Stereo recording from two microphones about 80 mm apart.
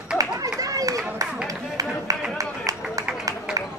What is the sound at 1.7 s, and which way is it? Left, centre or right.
Music, right.